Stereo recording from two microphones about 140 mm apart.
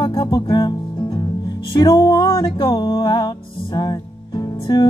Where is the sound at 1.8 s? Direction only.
30° left (ahead or behind).